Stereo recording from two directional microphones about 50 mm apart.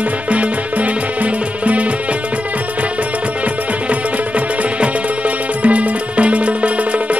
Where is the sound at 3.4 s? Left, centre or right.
Right.